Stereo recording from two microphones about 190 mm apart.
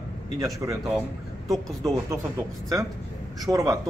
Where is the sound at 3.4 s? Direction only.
15° right (ahead or behind).